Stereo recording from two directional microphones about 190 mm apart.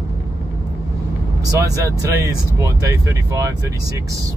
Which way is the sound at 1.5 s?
20° right (ahead or behind).